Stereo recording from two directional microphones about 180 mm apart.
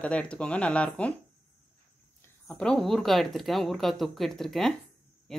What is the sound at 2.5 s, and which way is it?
Speech, 5° left (ahead or behind).